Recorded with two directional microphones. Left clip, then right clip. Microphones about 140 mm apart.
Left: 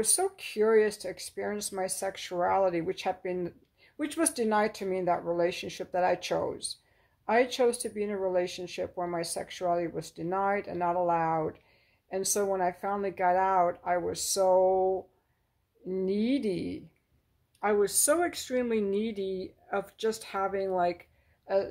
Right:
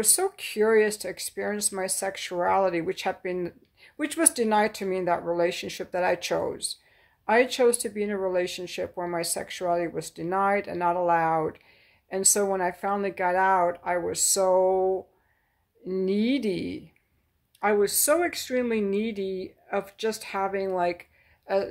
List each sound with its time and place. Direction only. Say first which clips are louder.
0.0 s speech: right 3 dB; 20° right (ahead or behind)